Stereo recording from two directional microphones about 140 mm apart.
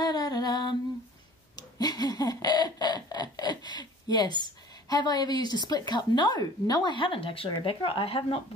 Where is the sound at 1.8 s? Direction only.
30° left (ahead or behind).